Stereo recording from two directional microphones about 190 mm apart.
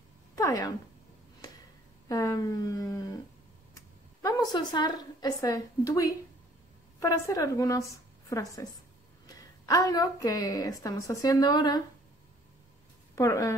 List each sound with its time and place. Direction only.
0.4 s speech: 20° left (ahead or behind)
2.0 s a woman's voice: 20° left (ahead or behind)
13.1 s speech: 15° left (ahead or behind)